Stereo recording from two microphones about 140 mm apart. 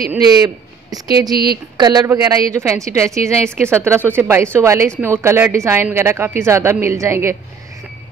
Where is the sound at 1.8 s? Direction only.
30° right (ahead or behind).